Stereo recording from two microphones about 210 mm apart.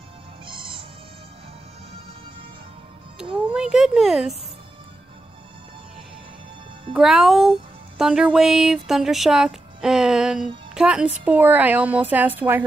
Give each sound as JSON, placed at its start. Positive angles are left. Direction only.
{"t": 0.5, "sound": "music", "side_deg": -25}
{"t": 3.5, "sound": "speech", "side_deg": -5}
{"t": 6.9, "sound": "a woman's voice", "side_deg": 0}